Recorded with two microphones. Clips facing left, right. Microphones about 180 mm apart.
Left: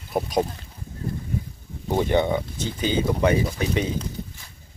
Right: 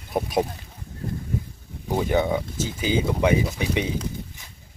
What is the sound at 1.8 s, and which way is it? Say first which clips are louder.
Speech: left 1 dB; 5° right (ahead or behind).